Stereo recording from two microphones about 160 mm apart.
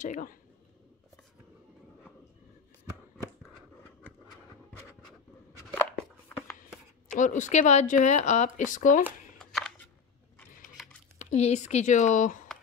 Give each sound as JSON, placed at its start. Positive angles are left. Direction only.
{"t": 0.0, "sound": "speech", "side_deg": 55}
{"t": 7.2, "sound": "speech", "side_deg": 50}
{"t": 9.4, "sound": "shuffling cards", "side_deg": 0}
{"t": 11.1, "sound": "speech", "side_deg": 45}